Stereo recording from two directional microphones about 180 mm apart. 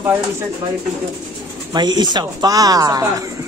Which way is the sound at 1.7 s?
25° right (ahead or behind).